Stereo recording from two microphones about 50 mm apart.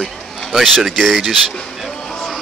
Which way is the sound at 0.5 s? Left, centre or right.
Centre.